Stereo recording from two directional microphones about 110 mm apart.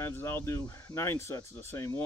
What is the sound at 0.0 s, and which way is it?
Speech, 25° left (ahead or behind).